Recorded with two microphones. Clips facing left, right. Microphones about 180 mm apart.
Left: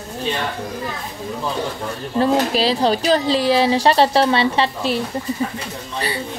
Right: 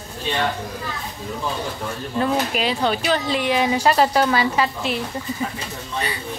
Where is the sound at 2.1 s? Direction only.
35° left (ahead or behind).